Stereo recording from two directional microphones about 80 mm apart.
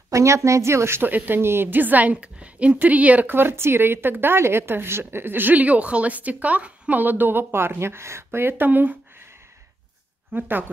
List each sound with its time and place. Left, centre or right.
0.1 s a woman's voice: right
10.3 s a woman's voice: right